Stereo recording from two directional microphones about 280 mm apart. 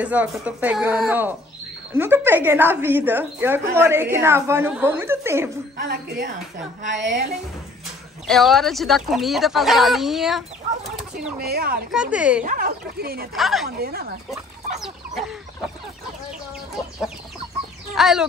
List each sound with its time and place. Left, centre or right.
0.0 s a woman's voice: centre
5.8 s speech: right
8.3 s speech: centre
11.4 s speech: right
11.9 s speech: centre
12.4 s speech: right
13.3 s speech: centre
13.7 s speech: right
14.3 s chicken: centre
17.9 s speech: centre